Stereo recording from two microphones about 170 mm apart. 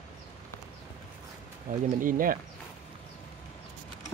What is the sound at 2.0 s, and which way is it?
Speech, 55° right (ahead or behind).